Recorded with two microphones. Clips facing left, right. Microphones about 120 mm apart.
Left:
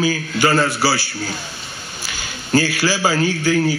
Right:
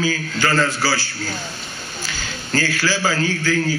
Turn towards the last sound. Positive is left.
turn(degrees=15)  # may be behind; listen again after turning